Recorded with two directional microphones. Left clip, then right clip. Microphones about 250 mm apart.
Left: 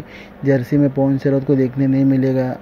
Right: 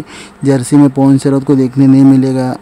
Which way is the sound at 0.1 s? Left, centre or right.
Centre.